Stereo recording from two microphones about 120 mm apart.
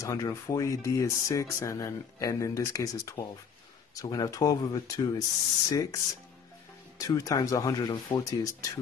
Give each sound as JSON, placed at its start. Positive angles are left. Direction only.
{"t": 0.0, "sound": "speech", "side_deg": 25}
{"t": 7.0, "sound": "speech", "side_deg": 25}